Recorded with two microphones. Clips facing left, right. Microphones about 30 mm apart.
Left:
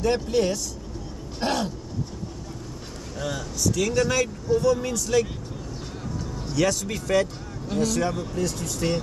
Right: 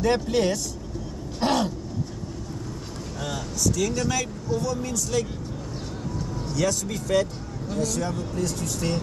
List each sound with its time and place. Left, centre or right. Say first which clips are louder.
0.0 s speech: even; centre
1.4 s throat clearing: right 3 dB; centre
3.5 s speech: left 2 dB; left
6.5 s speech: left 2 dB; left
7.7 s speech: left 3 dB; left